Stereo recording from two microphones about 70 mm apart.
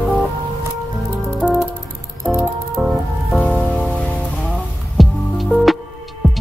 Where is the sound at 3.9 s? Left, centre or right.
Centre.